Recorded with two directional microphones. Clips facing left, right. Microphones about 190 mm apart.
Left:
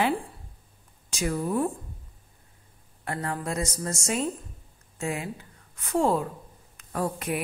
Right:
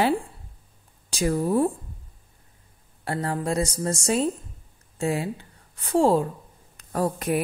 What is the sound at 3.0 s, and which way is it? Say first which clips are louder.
A woman's voice: right 4 dB; 30° right (ahead or behind).